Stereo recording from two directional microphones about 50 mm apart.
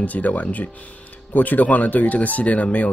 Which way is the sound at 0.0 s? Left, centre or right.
Left.